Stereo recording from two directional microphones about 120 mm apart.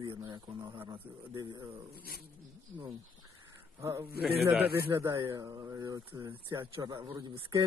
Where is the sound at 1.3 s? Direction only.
40° right (ahead or behind).